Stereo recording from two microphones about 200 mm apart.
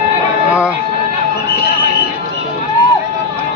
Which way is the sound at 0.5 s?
5° right (ahead or behind).